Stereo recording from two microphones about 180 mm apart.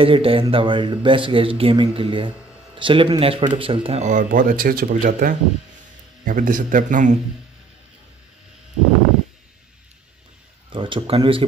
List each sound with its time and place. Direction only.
0.0 s a man's voice: 30° right (ahead or behind)
10.7 s speech: 30° right (ahead or behind)